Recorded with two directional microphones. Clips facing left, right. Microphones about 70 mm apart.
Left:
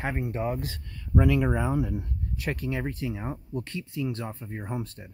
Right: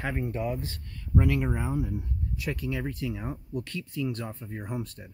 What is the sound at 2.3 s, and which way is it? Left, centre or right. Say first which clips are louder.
Speech: left 2 dB; left.